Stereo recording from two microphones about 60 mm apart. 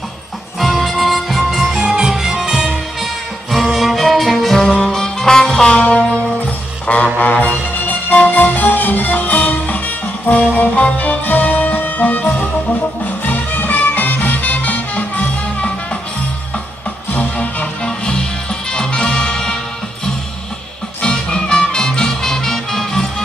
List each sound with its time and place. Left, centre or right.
0.6 s music: centre
7.2 s music: left
17.1 s music: left
21.0 s music: centre